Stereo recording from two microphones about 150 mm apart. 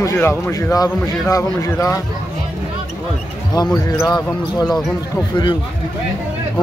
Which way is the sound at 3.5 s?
25° left (ahead or behind).